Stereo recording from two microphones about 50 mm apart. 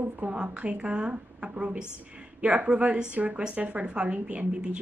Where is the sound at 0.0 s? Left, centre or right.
Right.